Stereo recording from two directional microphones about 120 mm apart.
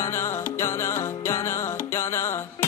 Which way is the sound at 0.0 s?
20° left (ahead or behind).